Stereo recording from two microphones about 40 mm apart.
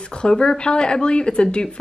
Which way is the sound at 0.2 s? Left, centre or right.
Left.